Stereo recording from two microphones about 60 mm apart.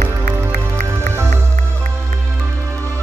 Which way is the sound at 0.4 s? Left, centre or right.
Right.